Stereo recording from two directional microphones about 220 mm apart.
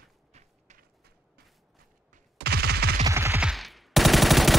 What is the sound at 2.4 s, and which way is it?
Gunshot, 45° right (ahead or behind).